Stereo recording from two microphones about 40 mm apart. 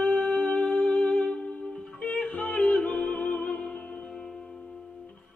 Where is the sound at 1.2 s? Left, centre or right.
Left.